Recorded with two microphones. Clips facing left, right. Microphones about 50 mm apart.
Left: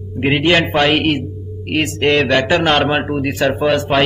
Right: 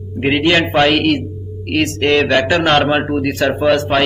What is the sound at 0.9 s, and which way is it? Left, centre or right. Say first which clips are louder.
Speech: right 1 dB; centre.